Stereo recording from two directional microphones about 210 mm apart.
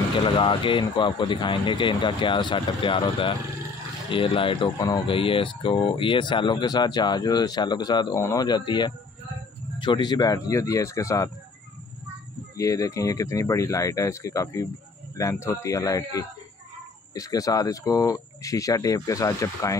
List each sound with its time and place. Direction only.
0.2 s speech: 25° left (ahead or behind)
12.5 s speech: 15° left (ahead or behind)